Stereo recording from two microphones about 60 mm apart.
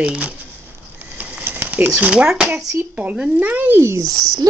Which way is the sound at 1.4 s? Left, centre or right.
Right.